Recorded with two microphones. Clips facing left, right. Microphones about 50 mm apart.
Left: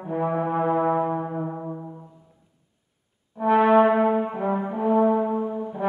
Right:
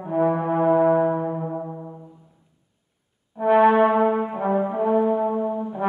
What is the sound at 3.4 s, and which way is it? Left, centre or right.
Brass instrument, centre.